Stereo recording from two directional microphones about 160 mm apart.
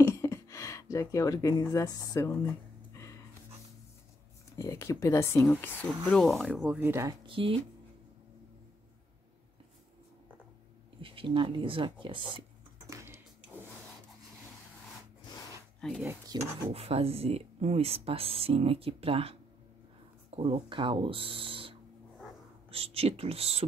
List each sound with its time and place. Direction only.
0.0 s a sound: 20° left (ahead or behind)
4.6 s speech: 15° left (ahead or behind); by 7.2 s 15° right (ahead or behind)
7.2 s speech: 35° right (ahead or behind)
11.0 s speech: 35° right (ahead or behind)
12.9 s a sound: 15° right (ahead or behind)
15.8 s speech: 5° left (ahead or behind)
16.3 s speech: 25° right (ahead or behind)
16.7 s speech: 40° right (ahead or behind)